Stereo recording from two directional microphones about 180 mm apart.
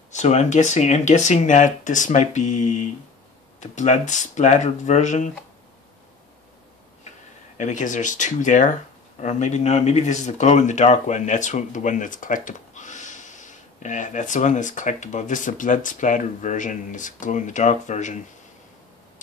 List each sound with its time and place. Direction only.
0.1 s speech: 40° left (ahead or behind)
7.5 s speech: 45° left (ahead or behind)